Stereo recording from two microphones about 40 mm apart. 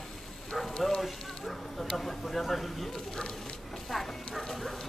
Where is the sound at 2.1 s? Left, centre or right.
Centre.